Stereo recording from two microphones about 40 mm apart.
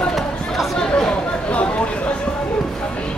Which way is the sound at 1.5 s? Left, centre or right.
Left.